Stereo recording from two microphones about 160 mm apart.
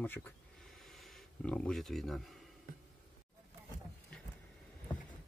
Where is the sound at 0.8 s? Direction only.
Centre (ahead or behind).